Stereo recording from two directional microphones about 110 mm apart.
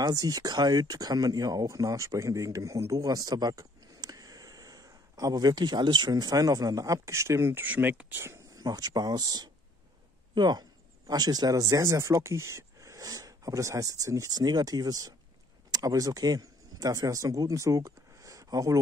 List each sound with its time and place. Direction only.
0.0 s speech: 35° right (ahead or behind)
8.6 s speech: 35° right (ahead or behind)